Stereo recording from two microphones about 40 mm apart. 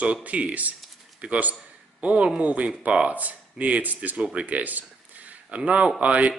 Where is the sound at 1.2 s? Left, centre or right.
Right.